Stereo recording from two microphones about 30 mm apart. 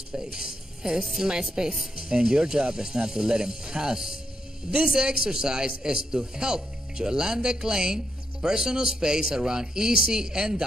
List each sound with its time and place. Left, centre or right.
0.1 s speech: right